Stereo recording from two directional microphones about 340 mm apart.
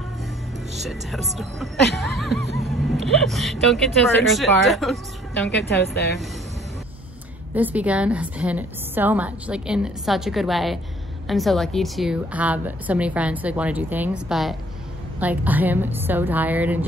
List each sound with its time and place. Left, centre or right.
0.8 s a woman's voice: centre
5.8 s speech: left
7.5 s a woman's voice: centre